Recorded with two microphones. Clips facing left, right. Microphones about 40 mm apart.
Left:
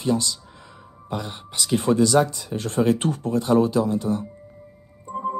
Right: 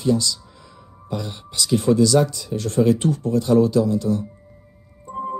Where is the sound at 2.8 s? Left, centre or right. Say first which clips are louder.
Right 3 dB; left.